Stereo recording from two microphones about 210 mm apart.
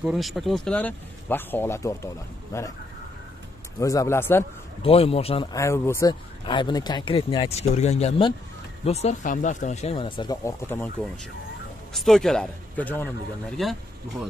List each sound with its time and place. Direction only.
0.0 s speech: centre (ahead or behind); by 2.7 s 15° left (ahead or behind)
3.8 s speech: 15° left (ahead or behind)
4.8 s speech: 30° left (ahead or behind); by 13.7 s centre (ahead or behind)